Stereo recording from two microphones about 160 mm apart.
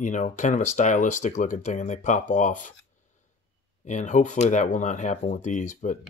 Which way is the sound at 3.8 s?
50° left (ahead or behind).